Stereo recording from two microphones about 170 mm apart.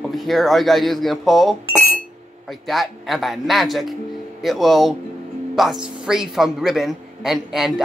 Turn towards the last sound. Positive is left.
turn(degrees=0)  # may be behind; listen again after turning